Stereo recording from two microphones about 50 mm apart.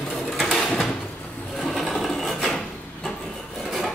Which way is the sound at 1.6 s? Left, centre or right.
Centre.